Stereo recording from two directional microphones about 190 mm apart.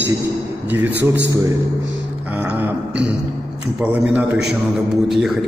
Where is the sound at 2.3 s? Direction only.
5° right (ahead or behind).